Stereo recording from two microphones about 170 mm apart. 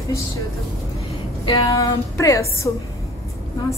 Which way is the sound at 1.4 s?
20° left (ahead or behind).